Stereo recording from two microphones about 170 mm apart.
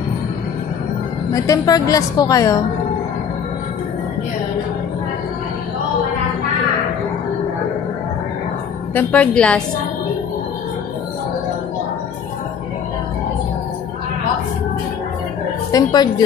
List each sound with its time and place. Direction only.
1.3 s a woman's voice: 20° left (ahead or behind)
8.9 s a woman's voice: 5° left (ahead or behind)
15.7 s a woman's voice: 25° left (ahead or behind)